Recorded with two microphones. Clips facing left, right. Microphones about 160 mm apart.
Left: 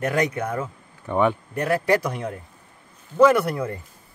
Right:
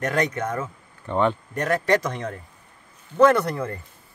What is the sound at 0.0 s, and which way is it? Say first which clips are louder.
Speech: left 1 dB; 10° left (ahead or behind).